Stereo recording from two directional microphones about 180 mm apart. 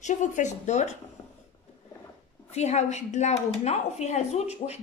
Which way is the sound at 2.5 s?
40° left (ahead or behind).